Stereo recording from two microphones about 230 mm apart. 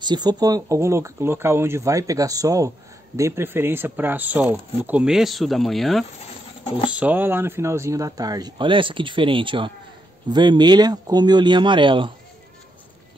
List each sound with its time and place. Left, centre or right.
0.0 s speech: centre
6.6 s speech: left
6.9 s speech: centre